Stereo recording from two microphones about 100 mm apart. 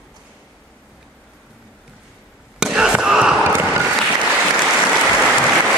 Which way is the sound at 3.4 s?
20° right (ahead or behind).